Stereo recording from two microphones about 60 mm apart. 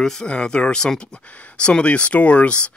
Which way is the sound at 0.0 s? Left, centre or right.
Centre.